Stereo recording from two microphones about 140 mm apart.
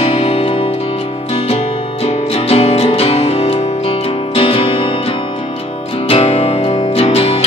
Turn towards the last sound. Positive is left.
turn(degrees=45)  # may be behind; listen again after turning